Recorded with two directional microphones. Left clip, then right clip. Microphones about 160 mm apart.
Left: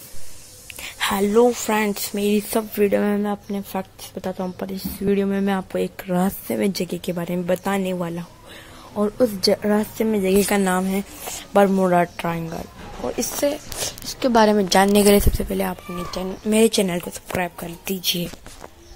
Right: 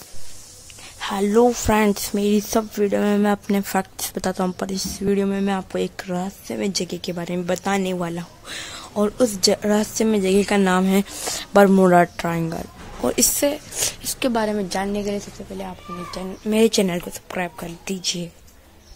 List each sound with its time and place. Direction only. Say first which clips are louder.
0.8 s a sound: left 6 dB; 10° left (ahead or behind)
1.3 s speech: right 2 dB; 15° right (ahead or behind)
2.7 s a woman's voice: left 4 dB; centre (ahead or behind)
3.2 s speech: right 5 dB; 15° right (ahead or behind)
4.9 s a woman's voice: left 1 dB; 5° left (ahead or behind)
6.4 s a woman's voice: left 2 dB; 15° left (ahead or behind); by 10.8 s centre (ahead or behind)
10.8 s speech: right 4 dB; 15° right (ahead or behind)
13.0 s a woman's voice: right 5 dB; 20° right (ahead or behind)
13.4 s speech: right 1 dB; 5° right (ahead or behind)
14.3 s a woman's voice: left 11 dB; 20° left (ahead or behind); by 15.7 s 35° left (ahead or behind)
16.1 s speech: left 2 dB; 15° left (ahead or behind)
16.5 s a woman's voice: even; centre (ahead or behind)